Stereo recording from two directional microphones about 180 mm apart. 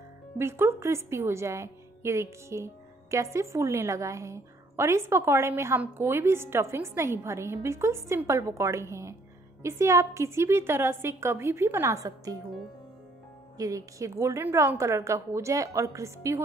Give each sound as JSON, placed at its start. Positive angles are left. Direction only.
{"t": 0.4, "sound": "a woman's voice", "side_deg": -15}
{"t": 13.6, "sound": "a woman's voice", "side_deg": -20}